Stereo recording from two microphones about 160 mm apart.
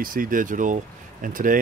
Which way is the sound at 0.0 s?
60° right (ahead or behind).